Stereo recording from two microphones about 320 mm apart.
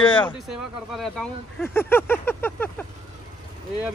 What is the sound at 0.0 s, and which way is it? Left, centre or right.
Speech, centre.